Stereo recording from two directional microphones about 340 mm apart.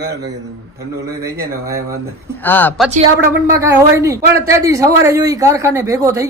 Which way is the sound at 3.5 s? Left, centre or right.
Centre.